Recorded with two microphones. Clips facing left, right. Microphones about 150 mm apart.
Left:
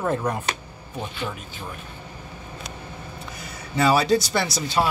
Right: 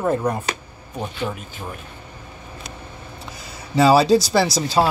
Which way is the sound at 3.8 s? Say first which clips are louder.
Right 5 dB; 30° right (ahead or behind).